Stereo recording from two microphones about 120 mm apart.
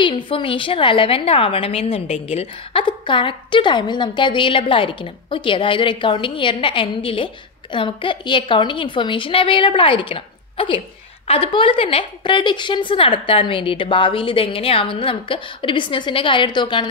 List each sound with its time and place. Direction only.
0.0 s a woman's voice: 45° left (ahead or behind)